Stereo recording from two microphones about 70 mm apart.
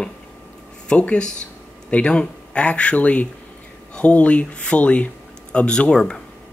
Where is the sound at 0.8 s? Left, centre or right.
Centre.